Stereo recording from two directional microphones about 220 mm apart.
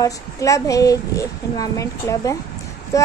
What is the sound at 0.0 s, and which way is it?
Speech, 15° left (ahead or behind).